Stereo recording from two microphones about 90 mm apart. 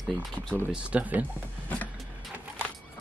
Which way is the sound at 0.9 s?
15° right (ahead or behind).